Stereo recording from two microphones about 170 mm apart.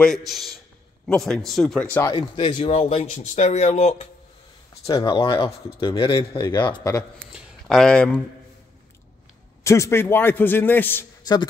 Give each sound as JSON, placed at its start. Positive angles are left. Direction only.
{"t": 0.3, "sound": "speech", "side_deg": 0}
{"t": 2.0, "sound": "speech", "side_deg": 30}
{"t": 4.9, "sound": "speech", "side_deg": 30}
{"t": 7.3, "sound": "speech", "side_deg": 0}
{"t": 9.6, "sound": "a man's voice", "side_deg": 15}